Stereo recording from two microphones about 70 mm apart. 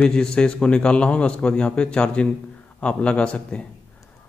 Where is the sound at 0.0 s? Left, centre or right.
Centre.